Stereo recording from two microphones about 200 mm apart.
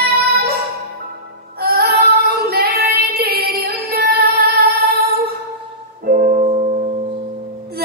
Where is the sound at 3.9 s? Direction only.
50° right (ahead or behind).